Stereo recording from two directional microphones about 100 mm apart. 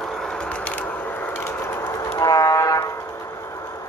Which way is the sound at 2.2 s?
40° left (ahead or behind).